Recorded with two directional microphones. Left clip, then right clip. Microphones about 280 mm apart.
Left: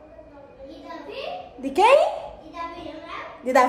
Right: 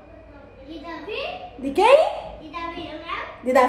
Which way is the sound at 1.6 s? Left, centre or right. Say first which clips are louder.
Right 1 dB; centre.